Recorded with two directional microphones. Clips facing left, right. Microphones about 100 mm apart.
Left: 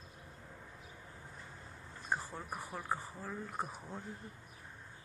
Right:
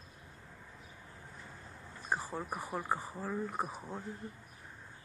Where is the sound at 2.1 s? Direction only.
15° right (ahead or behind).